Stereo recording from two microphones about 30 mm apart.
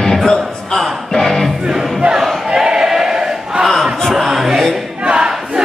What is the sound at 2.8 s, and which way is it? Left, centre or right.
Choir, centre.